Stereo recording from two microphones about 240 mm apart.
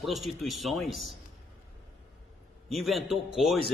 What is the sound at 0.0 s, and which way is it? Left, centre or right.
A man's voice, centre.